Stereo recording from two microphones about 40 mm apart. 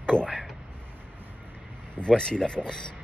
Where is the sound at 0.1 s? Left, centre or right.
Left.